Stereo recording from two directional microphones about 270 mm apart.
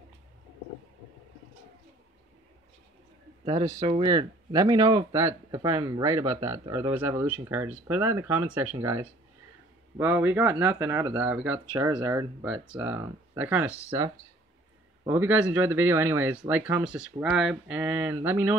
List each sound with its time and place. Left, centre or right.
3.4 s speech: centre